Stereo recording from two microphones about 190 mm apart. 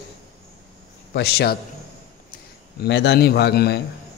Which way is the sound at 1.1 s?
60° left (ahead or behind).